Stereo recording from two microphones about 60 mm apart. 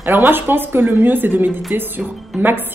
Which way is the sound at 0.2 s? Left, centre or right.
Right.